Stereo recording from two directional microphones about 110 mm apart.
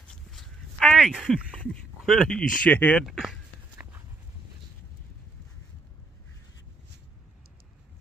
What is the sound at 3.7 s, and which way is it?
Dog, 20° right (ahead or behind).